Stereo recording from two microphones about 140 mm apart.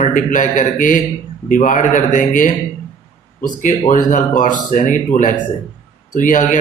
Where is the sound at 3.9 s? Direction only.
65° left (ahead or behind).